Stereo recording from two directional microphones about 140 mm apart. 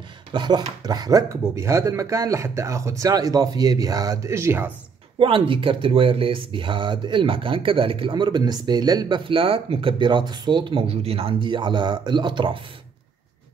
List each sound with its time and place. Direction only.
0.3 s speech: 30° right (ahead or behind); by 4.7 s 15° right (ahead or behind)
5.2 s speech: 40° right (ahead or behind)
9.3 s speech: 40° right (ahead or behind)